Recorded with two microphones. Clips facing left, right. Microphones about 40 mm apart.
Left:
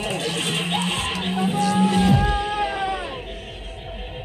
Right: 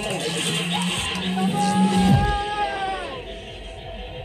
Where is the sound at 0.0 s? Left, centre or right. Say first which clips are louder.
Left 1 dB; left.